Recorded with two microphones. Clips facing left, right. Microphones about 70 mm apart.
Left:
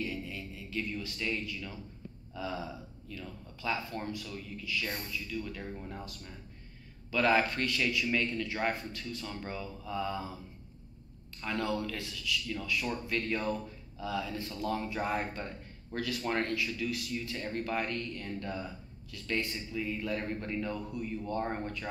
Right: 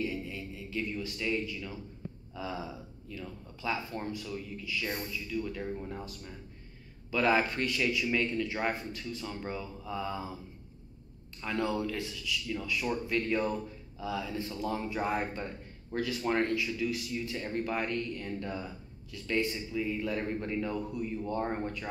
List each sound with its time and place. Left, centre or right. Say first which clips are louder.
0.0 s music: right 2 dB; centre
2.3 s speech: left 1 dB; centre
7.1 s speech: even; centre
11.4 s speech: right 2 dB; centre